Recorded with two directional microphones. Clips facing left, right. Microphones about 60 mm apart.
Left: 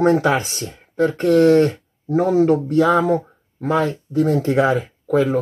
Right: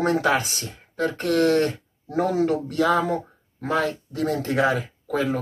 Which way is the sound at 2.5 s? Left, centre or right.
Left.